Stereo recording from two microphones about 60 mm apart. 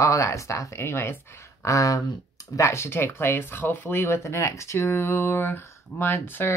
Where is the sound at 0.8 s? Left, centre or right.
Left.